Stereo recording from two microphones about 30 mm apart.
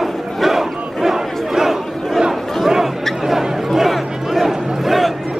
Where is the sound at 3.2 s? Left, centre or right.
Centre.